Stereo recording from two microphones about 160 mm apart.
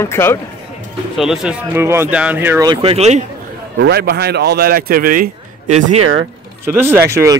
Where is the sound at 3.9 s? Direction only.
80° right; by 5.3 s 65° right (ahead or behind).